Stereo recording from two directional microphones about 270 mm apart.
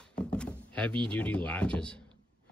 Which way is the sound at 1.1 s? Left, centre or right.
Centre.